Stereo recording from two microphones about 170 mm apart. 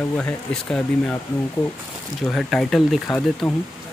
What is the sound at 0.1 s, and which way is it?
Speech, 10° left (ahead or behind).